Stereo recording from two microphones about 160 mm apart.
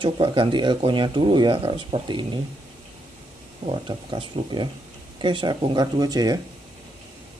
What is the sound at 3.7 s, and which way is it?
Speech, 35° right (ahead or behind).